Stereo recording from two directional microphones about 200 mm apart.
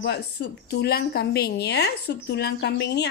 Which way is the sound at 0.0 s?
55° left (ahead or behind).